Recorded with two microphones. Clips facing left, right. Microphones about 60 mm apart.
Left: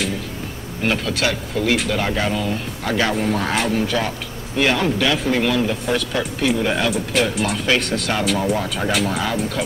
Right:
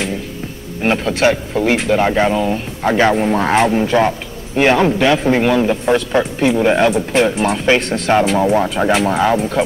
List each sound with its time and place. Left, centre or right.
0.8 s a man's voice: right